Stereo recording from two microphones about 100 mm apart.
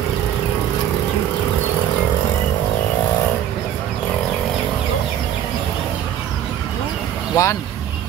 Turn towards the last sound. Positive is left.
turn(degrees=30)  # may be behind; listen again after turning